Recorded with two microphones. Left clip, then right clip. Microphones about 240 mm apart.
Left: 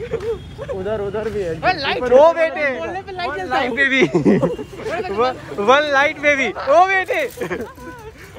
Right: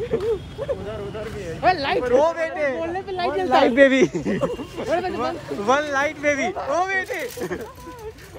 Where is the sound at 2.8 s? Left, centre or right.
Right.